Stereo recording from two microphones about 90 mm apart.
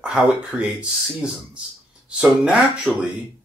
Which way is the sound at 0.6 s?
10° right (ahead or behind).